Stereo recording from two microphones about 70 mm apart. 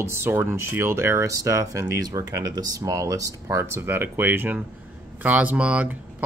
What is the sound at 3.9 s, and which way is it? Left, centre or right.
Speech, right.